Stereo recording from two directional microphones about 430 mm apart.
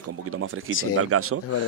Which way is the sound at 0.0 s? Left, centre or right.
Right.